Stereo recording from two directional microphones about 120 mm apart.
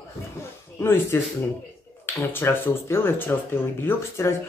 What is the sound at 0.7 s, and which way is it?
Speech, 20° left (ahead or behind).